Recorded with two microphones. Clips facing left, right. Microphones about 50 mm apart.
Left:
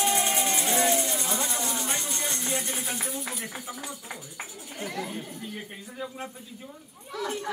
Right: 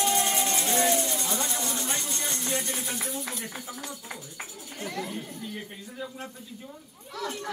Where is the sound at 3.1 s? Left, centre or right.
Left.